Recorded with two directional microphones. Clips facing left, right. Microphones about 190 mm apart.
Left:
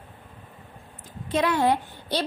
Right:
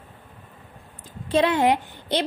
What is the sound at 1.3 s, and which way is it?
Speech, 25° right (ahead or behind).